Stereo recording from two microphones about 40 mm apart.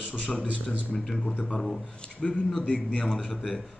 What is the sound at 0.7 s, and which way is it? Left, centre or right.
Speech, centre.